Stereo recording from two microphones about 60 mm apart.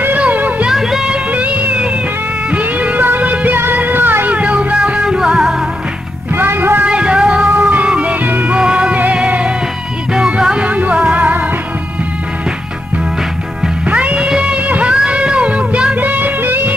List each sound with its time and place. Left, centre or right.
0.2 s music: right
0.7 s music: centre
1.3 s music: right; by 5.6 s centre
6.3 s music: right
6.8 s music: centre
8.5 s music: centre
13.8 s music: right